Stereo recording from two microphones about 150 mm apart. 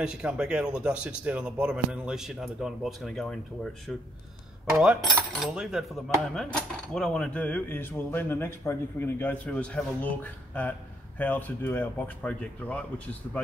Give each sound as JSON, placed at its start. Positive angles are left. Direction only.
{"t": 0.0, "sound": "speech", "side_deg": -5}
{"t": 6.3, "sound": "cutlery", "side_deg": 5}